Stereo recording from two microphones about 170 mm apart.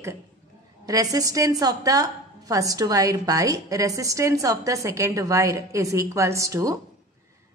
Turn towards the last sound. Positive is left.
turn(degrees=-20)  # may be behind; listen again after turning